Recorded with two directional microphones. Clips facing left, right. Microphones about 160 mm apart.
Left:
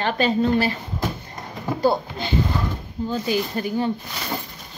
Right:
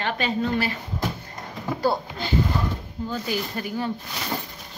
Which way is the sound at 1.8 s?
20° left (ahead or behind).